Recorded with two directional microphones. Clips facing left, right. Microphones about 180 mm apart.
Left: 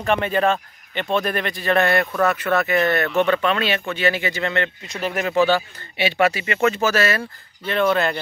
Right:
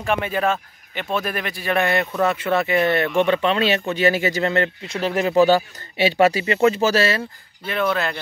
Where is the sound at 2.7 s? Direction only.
10° right (ahead or behind).